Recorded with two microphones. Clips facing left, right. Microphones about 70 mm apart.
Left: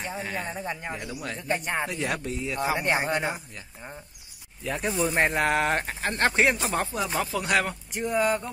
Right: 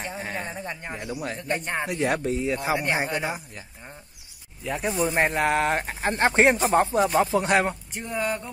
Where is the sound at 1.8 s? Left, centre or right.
Right.